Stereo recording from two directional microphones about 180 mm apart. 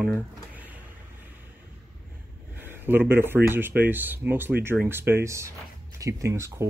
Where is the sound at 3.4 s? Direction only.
10° right (ahead or behind).